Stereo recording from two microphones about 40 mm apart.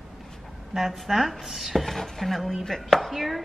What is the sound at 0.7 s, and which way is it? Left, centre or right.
Speech, centre.